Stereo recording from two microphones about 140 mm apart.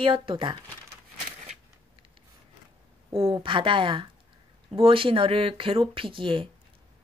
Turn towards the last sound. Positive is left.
turn(degrees=-40)  # may be behind; listen again after turning